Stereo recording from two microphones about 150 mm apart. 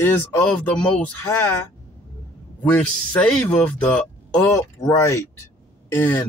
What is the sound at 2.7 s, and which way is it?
Speech, 10° left (ahead or behind).